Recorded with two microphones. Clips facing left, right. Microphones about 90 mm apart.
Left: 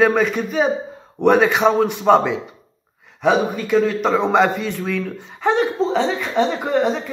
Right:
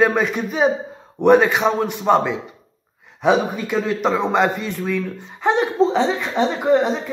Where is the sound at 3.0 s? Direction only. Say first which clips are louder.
Even; 20° right (ahead or behind).